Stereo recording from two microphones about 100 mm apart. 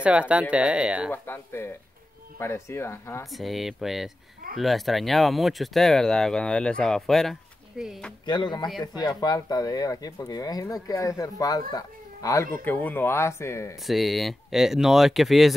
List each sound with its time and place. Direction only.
0.0 s speech: 10° right (ahead or behind)
1.1 s speech: 20° left (ahead or behind)
3.3 s speech: centre (ahead or behind)
8.3 s speech: 50° left (ahead or behind)
12.6 s speech: 20° left (ahead or behind)
13.8 s speech: centre (ahead or behind)